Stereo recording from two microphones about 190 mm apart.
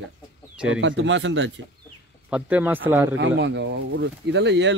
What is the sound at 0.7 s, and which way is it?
Speech, 80° right.